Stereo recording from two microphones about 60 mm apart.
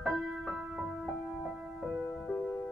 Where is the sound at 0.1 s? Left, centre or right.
Centre.